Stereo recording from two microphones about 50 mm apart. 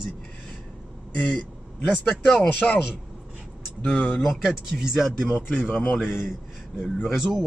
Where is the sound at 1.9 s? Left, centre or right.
Left.